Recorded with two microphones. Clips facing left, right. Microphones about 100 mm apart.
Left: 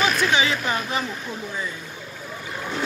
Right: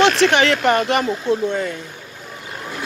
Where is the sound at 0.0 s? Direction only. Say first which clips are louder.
Right 7 dB; 75° right (ahead or behind).